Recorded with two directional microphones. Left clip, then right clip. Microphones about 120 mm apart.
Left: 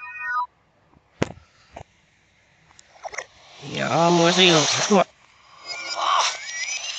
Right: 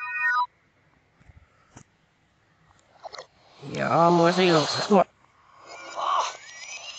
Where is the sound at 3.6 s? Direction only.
5° left (ahead or behind).